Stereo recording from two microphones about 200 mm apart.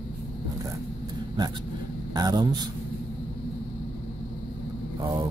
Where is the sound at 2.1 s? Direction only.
20° right (ahead or behind).